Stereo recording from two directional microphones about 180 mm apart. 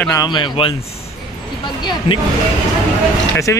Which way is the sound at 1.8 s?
25° left (ahead or behind).